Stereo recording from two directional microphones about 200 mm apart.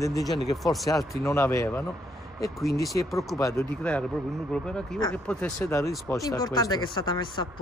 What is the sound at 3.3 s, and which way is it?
Speech, 15° left (ahead or behind).